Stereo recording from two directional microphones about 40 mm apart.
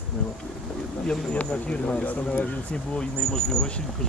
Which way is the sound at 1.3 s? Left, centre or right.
Left.